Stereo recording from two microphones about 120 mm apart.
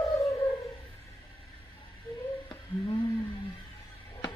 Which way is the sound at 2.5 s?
40° left (ahead or behind).